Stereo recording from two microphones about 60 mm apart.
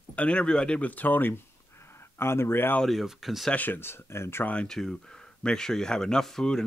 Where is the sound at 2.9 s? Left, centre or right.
Centre.